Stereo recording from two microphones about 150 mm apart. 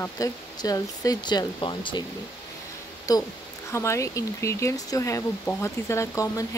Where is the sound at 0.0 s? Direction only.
25° left (ahead or behind).